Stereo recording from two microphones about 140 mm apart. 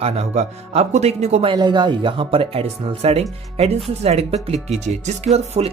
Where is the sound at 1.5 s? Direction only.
30° right (ahead or behind).